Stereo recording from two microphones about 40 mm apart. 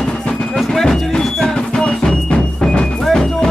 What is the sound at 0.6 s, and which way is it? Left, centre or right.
Music, centre.